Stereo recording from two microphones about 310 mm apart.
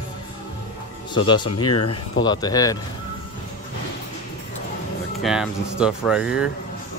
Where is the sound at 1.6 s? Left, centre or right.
Left.